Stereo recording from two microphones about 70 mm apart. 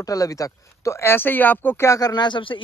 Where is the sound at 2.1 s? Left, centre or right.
Left.